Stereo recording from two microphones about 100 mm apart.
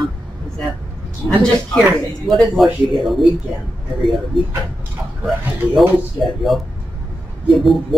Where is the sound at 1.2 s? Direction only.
25° left (ahead or behind).